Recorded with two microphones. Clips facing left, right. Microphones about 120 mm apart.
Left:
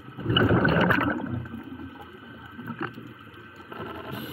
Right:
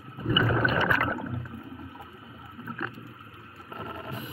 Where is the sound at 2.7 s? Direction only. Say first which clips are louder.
Left 2 dB; 30° left (ahead or behind).